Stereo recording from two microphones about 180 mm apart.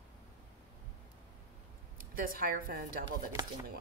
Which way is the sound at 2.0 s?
50° right (ahead or behind).